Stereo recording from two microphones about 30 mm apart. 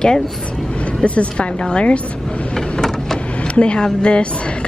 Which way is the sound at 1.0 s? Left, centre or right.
Left.